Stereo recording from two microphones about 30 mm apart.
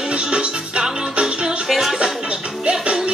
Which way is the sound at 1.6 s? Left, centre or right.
Centre.